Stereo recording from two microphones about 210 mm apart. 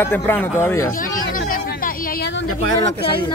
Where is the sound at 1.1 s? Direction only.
45° left (ahead or behind).